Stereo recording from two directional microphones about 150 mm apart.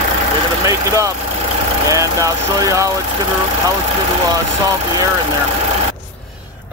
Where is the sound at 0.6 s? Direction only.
20° right (ahead or behind).